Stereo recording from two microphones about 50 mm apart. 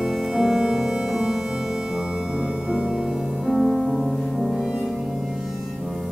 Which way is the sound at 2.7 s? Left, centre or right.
Centre.